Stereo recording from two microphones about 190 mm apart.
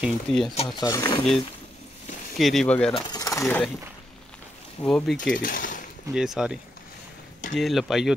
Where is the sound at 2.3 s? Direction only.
Centre (ahead or behind).